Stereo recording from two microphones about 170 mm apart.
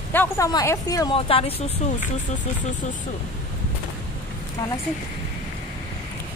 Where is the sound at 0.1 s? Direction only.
10° left (ahead or behind).